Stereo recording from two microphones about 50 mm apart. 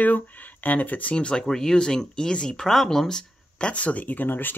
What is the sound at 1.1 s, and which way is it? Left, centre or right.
Speech, centre.